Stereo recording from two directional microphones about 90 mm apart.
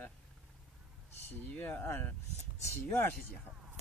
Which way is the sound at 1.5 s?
15° left (ahead or behind).